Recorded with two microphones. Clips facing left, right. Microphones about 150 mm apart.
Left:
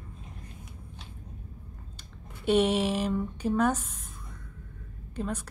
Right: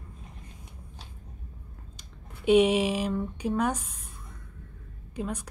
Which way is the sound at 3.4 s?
10° right (ahead or behind).